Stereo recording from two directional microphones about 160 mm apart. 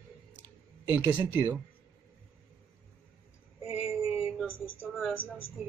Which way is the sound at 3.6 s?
35° left (ahead or behind).